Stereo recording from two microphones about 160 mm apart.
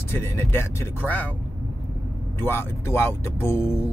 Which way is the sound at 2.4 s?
15° left (ahead or behind).